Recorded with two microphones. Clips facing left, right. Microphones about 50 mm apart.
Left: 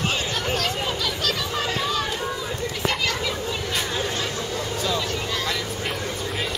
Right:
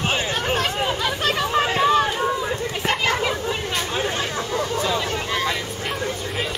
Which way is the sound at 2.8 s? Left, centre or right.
Right.